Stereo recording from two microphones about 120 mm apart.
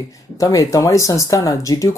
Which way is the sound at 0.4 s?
30° left (ahead or behind).